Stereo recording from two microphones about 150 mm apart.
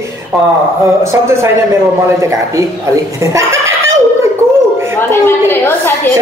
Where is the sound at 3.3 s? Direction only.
20° right (ahead or behind).